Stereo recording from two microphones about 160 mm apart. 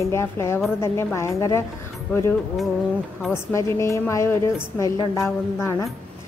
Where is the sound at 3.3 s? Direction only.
20° left (ahead or behind).